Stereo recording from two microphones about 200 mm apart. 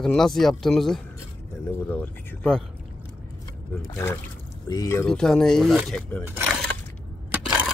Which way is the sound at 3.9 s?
10° left (ahead or behind).